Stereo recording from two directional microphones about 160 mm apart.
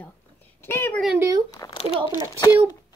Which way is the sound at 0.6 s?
15° left (ahead or behind).